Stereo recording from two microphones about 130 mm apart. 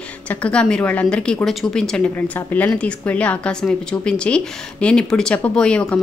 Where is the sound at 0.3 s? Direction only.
10° left (ahead or behind).